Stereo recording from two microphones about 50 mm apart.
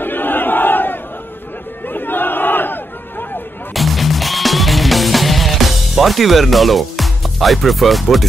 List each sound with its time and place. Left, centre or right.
0.0 s battle cry: left
1.9 s crowd: left
3.7 s music: centre